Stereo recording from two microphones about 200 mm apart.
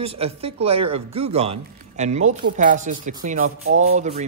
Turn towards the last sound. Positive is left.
turn(degrees=-35)  # may be behind; listen again after turning